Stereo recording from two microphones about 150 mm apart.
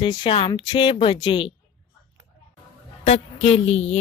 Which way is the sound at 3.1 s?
45° left (ahead or behind).